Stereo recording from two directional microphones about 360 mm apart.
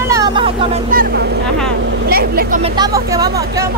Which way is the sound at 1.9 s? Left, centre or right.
Right.